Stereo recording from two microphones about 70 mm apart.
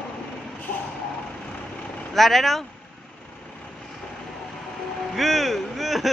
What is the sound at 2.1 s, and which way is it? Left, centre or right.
Speech, centre.